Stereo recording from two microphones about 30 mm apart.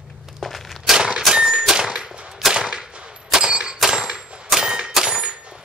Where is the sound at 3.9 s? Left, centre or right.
Centre.